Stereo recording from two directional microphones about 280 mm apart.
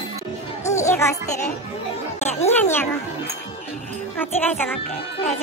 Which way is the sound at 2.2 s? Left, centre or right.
Left.